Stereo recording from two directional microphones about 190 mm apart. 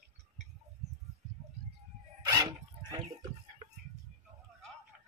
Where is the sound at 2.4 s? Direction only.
20° right (ahead or behind).